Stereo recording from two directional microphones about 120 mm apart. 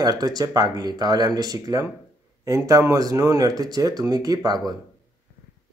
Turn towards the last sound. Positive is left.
turn(degrees=-35)  # may be behind; listen again after turning